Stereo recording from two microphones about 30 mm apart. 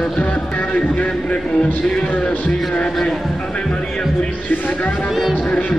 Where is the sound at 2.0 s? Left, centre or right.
Left.